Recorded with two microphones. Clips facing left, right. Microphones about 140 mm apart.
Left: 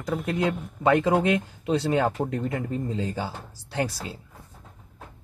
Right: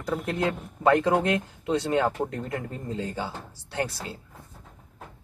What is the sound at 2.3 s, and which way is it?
Speech, 20° left (ahead or behind).